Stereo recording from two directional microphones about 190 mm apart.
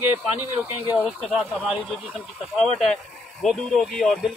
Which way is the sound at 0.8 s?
5° right (ahead or behind).